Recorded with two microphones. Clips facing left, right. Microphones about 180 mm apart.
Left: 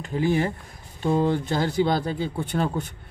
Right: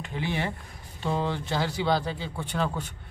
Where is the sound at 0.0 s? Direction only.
40° left (ahead or behind).